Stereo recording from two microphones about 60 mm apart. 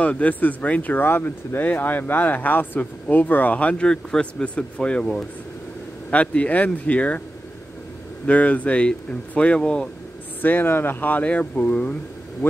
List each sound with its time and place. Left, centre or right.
0.0 s speech: left
6.0 s speech: left
8.3 s speech: left
10.4 s speech: left